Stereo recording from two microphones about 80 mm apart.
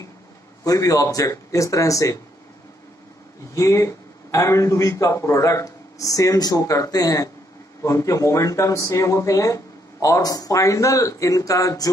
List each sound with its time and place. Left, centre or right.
0.7 s speech: left
3.5 s speech: left